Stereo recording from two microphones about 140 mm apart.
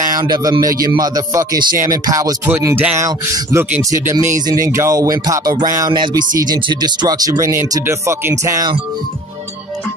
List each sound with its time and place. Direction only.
0.2 s speech: 25° right (ahead or behind)
2.6 s speech: 15° right (ahead or behind)